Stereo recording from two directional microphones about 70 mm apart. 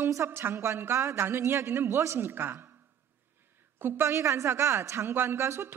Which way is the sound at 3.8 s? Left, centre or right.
Right.